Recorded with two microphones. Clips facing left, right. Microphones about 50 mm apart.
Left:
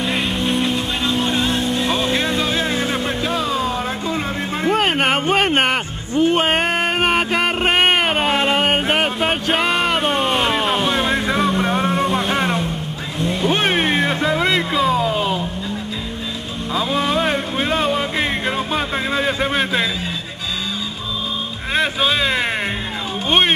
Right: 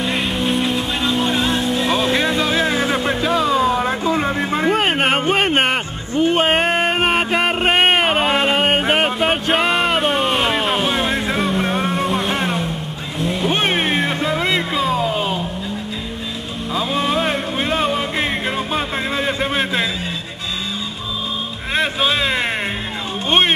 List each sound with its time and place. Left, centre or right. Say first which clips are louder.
0.0 s music: even; centre
3.4 s a sound: right 5 dB; centre
3.8 s vehicle: right 4 dB; right
4.6 s a sound: left 1 dB; centre
5.2 s music: even; centre
13.2 s vehicle: even; centre
13.7 s music: left 1 dB; centre
16.7 s a sound: even; centre
18.7 s music: left 1 dB; centre
21.7 s vehicle: even; centre